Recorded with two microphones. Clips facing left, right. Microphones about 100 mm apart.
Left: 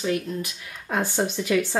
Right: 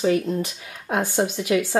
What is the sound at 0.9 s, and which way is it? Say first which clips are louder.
Speech: right 2 dB; 15° right (ahead or behind).